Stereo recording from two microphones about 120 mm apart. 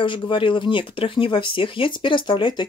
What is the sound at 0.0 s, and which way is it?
Speech, 45° left (ahead or behind).